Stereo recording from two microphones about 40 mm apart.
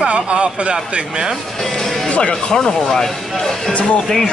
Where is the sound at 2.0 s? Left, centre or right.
Left.